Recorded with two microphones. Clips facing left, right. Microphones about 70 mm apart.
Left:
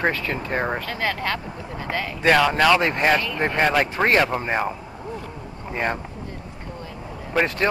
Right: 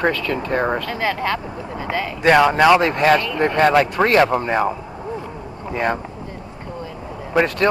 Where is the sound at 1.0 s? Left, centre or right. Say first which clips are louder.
Right 3 dB; centre.